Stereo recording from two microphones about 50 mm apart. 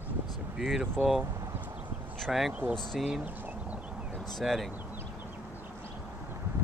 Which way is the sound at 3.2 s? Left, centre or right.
Right.